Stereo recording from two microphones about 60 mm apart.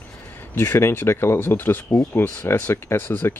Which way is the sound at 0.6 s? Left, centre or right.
Left.